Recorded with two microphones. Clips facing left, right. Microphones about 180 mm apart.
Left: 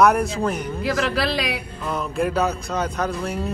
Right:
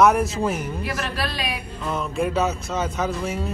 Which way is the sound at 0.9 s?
90° left.